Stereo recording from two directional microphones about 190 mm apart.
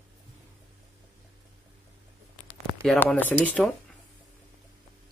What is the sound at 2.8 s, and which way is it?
Speech, 5° left (ahead or behind).